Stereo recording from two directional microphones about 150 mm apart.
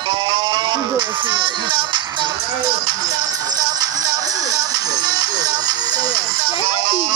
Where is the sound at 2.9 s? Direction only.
25° right (ahead or behind).